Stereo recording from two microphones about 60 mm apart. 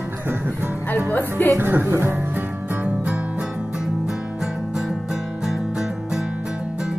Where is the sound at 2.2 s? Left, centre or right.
Right.